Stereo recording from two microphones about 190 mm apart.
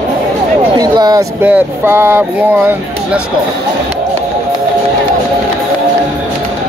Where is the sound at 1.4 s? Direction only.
10° right (ahead or behind).